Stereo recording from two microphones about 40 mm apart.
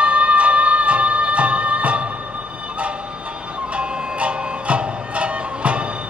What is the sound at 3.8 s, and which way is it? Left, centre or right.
Music, right.